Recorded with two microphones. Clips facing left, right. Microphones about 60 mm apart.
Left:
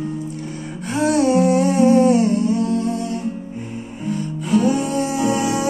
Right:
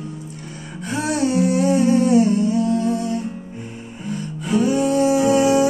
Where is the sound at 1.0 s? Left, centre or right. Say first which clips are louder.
Left 4 dB; left.